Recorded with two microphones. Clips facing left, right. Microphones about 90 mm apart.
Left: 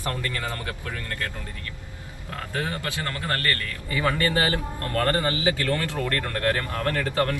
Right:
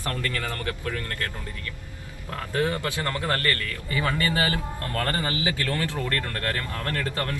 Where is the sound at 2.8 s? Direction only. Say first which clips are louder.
Right 2 dB; 20° right (ahead or behind).